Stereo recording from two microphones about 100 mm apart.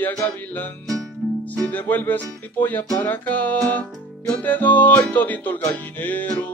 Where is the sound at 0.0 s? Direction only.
15° left (ahead or behind).